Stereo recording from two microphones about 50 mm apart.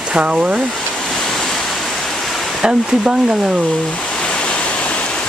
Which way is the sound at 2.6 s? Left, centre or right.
Centre.